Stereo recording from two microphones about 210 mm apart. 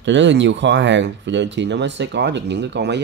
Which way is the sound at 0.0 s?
60° right (ahead or behind).